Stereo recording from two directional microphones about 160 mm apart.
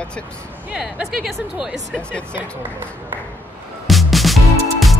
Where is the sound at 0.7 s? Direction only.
5° right (ahead or behind).